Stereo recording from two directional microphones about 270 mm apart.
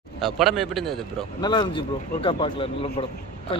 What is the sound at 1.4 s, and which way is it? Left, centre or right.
A man's voice, centre.